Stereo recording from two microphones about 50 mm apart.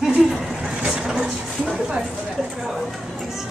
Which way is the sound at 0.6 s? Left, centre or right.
Centre.